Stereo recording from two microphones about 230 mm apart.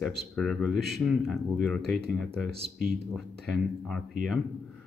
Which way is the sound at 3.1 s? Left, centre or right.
Centre.